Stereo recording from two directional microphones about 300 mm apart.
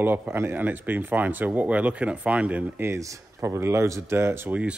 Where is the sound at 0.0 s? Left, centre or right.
Centre.